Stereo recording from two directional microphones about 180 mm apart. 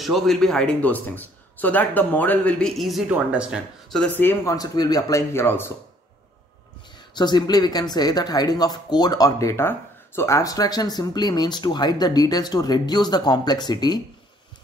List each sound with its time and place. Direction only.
0.0 s a man's voice: centre (ahead or behind)
7.2 s speech: 25° left (ahead or behind)